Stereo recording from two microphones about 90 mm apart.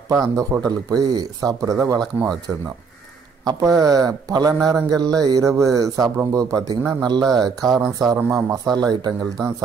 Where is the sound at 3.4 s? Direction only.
45° right (ahead or behind).